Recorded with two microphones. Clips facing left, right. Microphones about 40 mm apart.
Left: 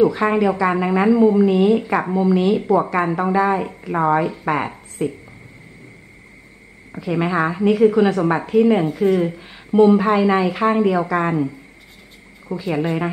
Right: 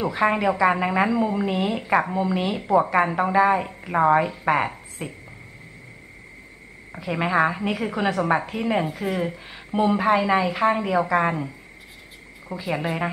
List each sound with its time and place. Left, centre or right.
0.0 s a woman's voice: centre
6.9 s a woman's voice: centre